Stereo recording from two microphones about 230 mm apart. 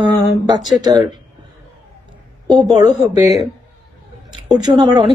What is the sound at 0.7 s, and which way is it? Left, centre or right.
Speech, centre.